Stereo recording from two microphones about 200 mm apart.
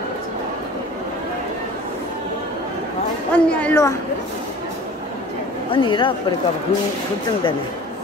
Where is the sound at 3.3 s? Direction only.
5° left (ahead or behind).